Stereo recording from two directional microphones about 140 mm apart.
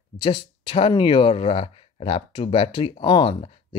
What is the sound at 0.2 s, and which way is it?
Speech, 40° left (ahead or behind).